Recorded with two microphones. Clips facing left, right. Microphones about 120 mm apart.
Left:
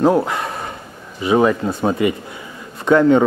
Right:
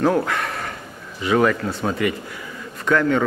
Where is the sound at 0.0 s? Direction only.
20° left (ahead or behind).